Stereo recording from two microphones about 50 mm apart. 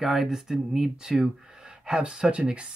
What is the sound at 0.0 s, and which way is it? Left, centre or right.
Speech, centre.